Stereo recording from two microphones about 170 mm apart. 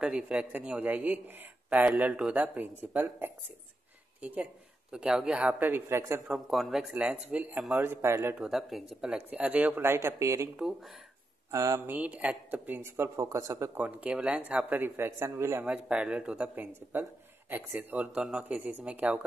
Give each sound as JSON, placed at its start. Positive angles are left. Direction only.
{"t": 0.0, "sound": "a man's voice", "side_deg": -5}
{"t": 6.2, "sound": "a man's voice", "side_deg": 0}
{"t": 8.5, "sound": "a man's voice", "side_deg": 0}
{"t": 10.6, "sound": "speech", "side_deg": 0}
{"t": 11.5, "sound": "a man's voice", "side_deg": -20}